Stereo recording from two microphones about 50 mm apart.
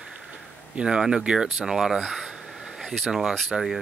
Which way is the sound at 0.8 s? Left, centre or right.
Centre.